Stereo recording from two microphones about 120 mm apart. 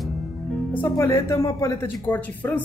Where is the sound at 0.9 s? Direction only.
25° left (ahead or behind).